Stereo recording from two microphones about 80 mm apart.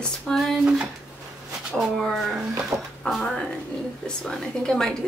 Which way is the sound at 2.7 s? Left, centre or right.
Right.